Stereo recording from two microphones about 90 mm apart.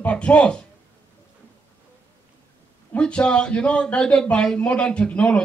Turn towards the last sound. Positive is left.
turn(degrees=15)  # may be behind; listen again after turning